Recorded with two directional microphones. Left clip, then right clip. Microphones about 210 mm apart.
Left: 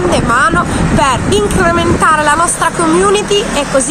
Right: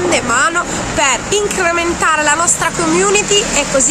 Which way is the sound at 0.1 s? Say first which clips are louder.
Left 3 dB; 10° right (ahead or behind).